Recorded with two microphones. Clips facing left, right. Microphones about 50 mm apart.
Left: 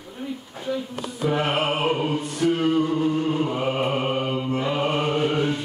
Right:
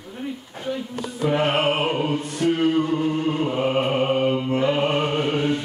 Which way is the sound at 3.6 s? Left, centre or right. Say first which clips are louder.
Right 3 dB; right.